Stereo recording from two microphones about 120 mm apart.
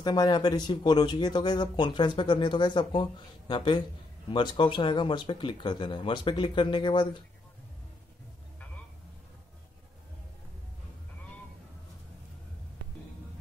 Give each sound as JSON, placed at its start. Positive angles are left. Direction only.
{"t": 0.0, "sound": "speech", "side_deg": 35}